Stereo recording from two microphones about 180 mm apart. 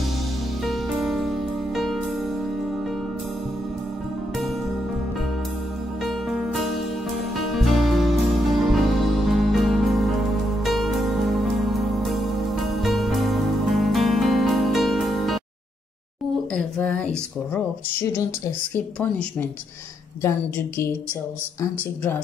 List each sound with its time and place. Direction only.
0.7 s music: centre (ahead or behind)
6.0 s music: centre (ahead or behind)
16.5 s a sound: 10° left (ahead or behind)
20.2 s a woman's voice: 15° left (ahead or behind)